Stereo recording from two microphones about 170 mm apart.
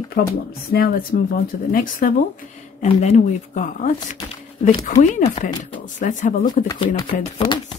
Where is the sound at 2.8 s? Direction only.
40° left (ahead or behind).